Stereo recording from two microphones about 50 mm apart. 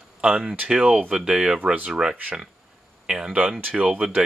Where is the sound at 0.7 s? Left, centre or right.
Centre.